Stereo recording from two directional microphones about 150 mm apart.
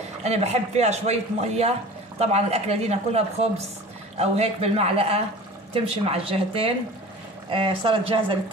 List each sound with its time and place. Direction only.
0.2 s speech: 45° right (ahead or behind)